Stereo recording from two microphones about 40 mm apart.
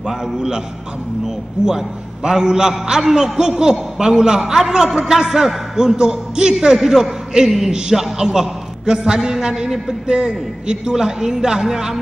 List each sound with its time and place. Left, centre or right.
1.2 s a man's voice: centre